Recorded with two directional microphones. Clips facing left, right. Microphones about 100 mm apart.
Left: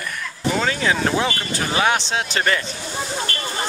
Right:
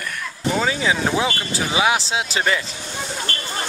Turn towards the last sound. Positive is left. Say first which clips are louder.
# even
turn(degrees=-35)  # may be behind; listen again after turning